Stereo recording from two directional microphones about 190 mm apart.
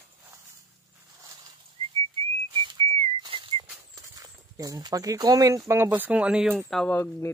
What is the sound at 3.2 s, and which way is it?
Whistle, 25° right (ahead or behind).